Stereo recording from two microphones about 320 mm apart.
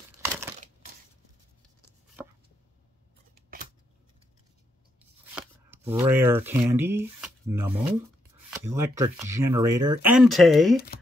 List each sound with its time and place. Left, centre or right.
0.2 s crumpling: centre
5.3 s speech: centre
9.7 s speech: right
10.0 s speech: centre